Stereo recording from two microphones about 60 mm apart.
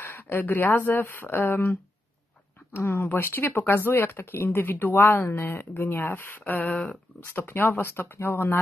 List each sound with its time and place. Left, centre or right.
0.0 s speech: left
2.7 s speech: left
6.6 s speech: left
7.3 s speech: left